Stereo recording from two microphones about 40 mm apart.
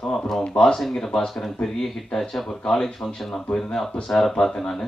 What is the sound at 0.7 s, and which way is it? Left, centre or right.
Speech, centre.